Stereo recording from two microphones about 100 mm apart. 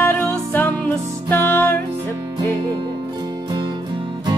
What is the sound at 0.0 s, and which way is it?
Music, 15° left (ahead or behind).